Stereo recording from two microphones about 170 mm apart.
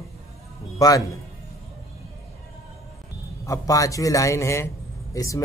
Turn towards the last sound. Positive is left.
turn(degrees=20)  # may be behind; listen again after turning